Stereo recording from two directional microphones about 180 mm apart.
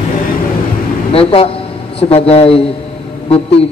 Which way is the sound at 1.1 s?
30° left (ahead or behind).